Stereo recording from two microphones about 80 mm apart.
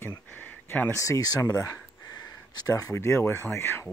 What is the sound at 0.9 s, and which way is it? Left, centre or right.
Speech, left.